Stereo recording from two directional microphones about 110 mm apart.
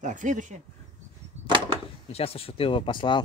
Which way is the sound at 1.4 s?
80° right.